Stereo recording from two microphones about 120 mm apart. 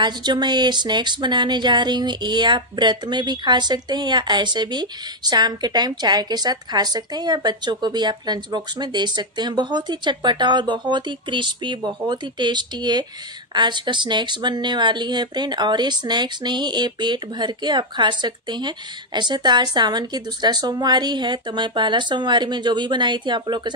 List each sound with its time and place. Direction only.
0.0 s speech: 35° right (ahead or behind)